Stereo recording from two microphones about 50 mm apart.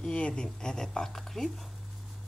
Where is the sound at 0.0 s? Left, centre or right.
Left.